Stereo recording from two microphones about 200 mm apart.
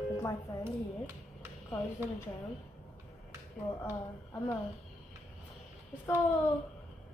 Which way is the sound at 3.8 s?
15° left (ahead or behind).